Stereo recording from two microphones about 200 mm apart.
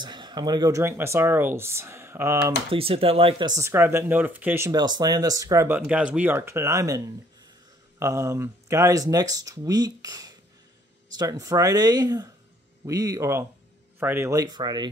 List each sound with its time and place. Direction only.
0.0 s speech: 20° right (ahead or behind)
2.7 s speech: 30° right (ahead or behind)
8.0 s speech: 15° right (ahead or behind)